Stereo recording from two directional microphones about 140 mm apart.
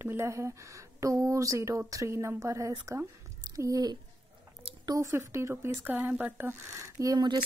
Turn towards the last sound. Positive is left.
turn(degrees=-30)  # may be behind; listen again after turning